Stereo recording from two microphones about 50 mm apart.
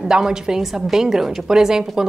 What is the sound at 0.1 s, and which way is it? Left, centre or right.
Speech, centre.